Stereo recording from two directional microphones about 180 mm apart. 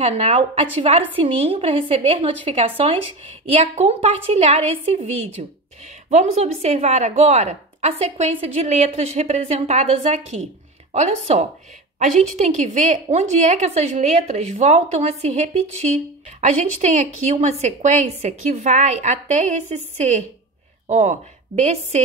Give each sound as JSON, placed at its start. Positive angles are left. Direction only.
{"t": 0.0, "sound": "speech", "side_deg": -35}
{"t": 6.0, "sound": "speech", "side_deg": -40}